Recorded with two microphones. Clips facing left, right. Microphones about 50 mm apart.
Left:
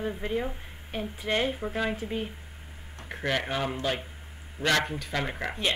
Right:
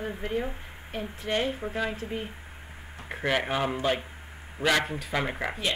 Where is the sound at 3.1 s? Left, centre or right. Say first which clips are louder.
Right 2 dB; centre.